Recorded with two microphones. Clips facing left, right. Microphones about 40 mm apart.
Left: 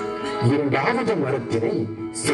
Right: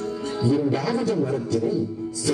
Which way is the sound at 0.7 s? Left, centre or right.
Left.